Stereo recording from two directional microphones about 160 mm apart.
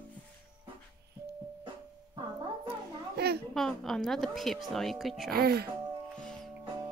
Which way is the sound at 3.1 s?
85° right.